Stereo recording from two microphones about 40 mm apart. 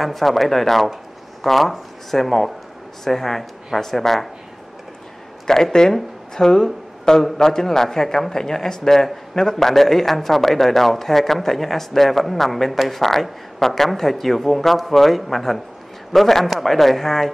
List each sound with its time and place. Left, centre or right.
0.0 s speech: centre
5.5 s a man's voice: centre